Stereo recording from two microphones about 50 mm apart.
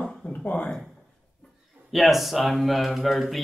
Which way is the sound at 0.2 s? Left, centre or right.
Left.